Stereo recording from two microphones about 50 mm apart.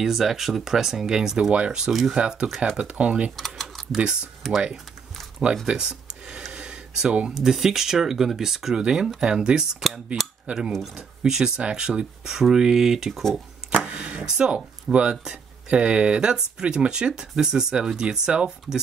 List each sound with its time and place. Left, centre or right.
0.0 s speech: centre
1.5 s speech: right
1.8 s speech: centre; by 3.3 s right
3.3 s speech: centre
5.7 s speech: centre
6.5 s a sound: centre
7.3 s speech: centre
13.7 s speech: right